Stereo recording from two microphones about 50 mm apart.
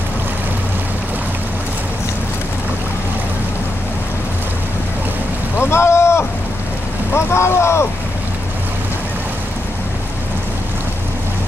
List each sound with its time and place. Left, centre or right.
5.6 s boat: left
7.2 s speech: left